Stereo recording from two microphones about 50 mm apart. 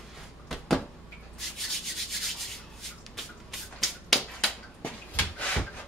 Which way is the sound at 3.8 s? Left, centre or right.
Centre.